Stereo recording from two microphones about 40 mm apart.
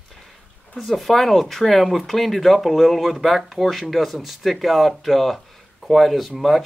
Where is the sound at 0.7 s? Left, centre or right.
Centre.